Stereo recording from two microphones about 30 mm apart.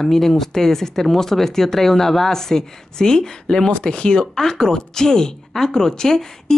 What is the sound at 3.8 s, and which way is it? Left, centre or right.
Speech, left.